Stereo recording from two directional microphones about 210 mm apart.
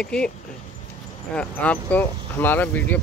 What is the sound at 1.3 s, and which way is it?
Speech, 5° left (ahead or behind).